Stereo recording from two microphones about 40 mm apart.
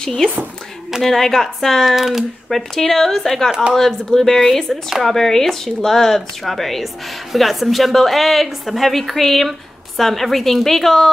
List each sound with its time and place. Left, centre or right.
1.0 s speech: centre
1.9 s speech: centre
2.5 s a woman's voice: centre